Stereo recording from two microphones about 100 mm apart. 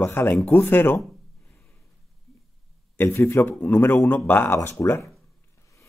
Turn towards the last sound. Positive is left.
turn(degrees=30)  # may be behind; listen again after turning